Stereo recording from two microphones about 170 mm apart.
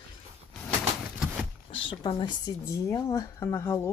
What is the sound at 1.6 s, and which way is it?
Zipper, 30° left (ahead or behind).